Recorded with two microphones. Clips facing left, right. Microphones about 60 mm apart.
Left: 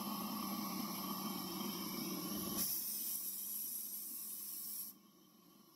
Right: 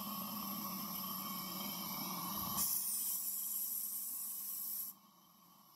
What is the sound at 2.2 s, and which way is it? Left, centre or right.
Dog, right.